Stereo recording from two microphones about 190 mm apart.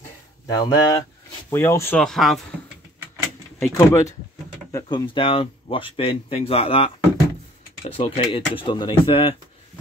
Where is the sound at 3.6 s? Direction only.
15° left (ahead or behind).